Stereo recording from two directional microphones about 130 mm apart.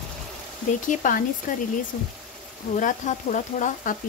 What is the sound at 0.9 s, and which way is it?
Speech, 90° left.